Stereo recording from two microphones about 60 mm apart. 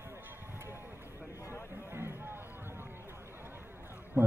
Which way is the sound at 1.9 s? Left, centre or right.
Right.